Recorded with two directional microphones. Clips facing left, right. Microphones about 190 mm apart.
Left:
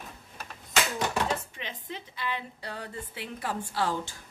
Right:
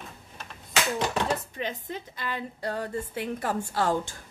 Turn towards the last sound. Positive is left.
turn(degrees=-45)  # may be behind; listen again after turning